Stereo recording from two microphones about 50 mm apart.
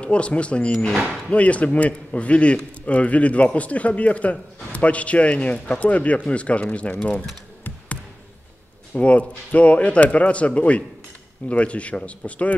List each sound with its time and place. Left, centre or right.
0.0 s a man's voice: left
8.9 s a man's voice: left